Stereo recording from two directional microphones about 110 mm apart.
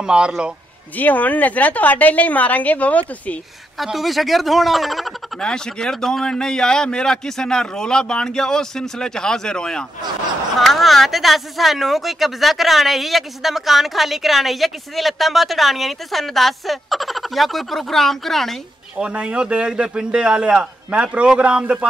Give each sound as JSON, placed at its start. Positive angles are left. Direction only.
{"t": 0.0, "sound": "a man's voice", "side_deg": -5}
{"t": 0.9, "sound": "a woman's voice", "side_deg": 15}
{"t": 3.7, "sound": "speech", "side_deg": 0}
{"t": 18.9, "sound": "a man's voice", "side_deg": -10}